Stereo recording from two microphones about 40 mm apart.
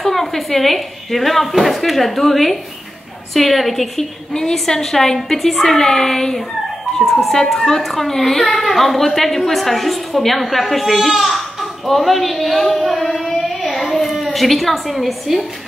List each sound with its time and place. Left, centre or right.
0.0 s a woman's voice: centre